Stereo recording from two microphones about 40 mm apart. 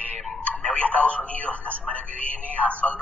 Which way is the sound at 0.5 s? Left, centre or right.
Left.